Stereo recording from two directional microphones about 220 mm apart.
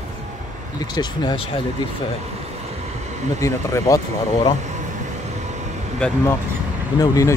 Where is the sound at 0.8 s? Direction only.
20° left (ahead or behind).